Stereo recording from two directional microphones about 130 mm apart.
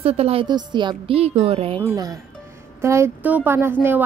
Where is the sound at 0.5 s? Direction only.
35° right (ahead or behind); by 1.8 s 50° right (ahead or behind).